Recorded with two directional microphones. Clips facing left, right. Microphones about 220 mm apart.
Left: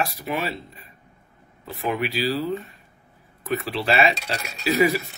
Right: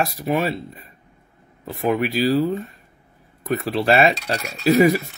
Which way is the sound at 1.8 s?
45° right (ahead or behind).